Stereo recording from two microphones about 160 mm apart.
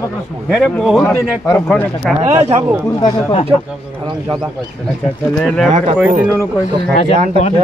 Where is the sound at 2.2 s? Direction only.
40° right (ahead or behind).